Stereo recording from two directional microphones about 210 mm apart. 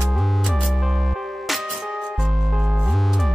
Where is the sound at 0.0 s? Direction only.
Centre (ahead or behind).